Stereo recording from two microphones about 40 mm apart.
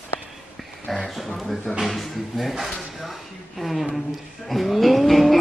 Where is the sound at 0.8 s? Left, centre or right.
Centre.